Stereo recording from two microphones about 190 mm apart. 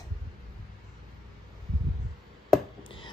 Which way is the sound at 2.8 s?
25° left (ahead or behind).